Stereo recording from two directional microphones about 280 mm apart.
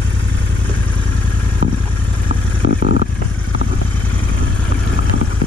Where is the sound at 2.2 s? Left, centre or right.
Left.